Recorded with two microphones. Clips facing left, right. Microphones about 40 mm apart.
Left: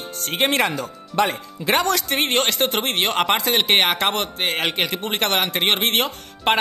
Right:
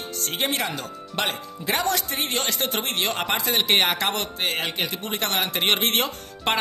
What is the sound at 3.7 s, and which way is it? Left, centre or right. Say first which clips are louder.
Speech: left 2 dB; left.